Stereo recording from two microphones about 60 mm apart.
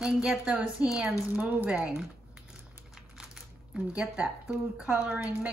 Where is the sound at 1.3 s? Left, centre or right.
Right.